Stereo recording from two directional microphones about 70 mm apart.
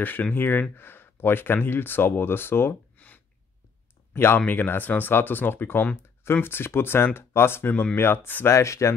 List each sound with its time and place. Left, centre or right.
0.0 s speech: left
3.0 s a sound: centre
4.1 s speech: left
8.5 s speech: left